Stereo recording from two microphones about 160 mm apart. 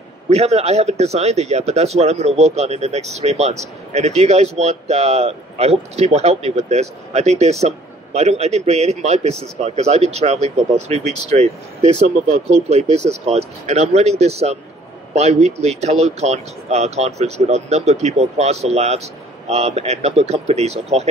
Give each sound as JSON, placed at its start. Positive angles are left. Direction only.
{"t": 0.3, "sound": "speech", "side_deg": -40}